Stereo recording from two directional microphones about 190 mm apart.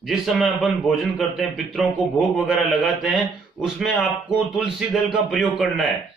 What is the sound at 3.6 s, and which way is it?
Speech, centre (ahead or behind).